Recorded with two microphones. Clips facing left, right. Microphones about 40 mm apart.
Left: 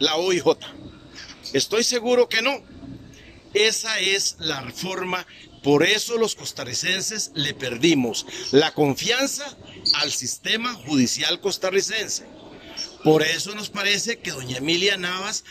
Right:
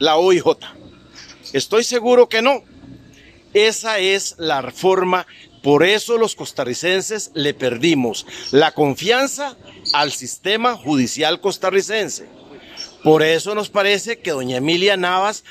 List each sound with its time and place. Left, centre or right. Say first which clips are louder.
0.0 s speech: right 7 dB; centre